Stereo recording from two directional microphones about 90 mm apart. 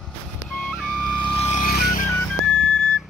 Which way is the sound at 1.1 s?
65° left (ahead or behind).